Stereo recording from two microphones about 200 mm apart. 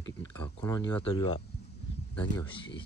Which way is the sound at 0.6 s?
20° left (ahead or behind).